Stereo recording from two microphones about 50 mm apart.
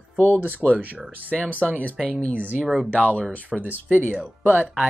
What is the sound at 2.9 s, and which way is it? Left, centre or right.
Speech, left.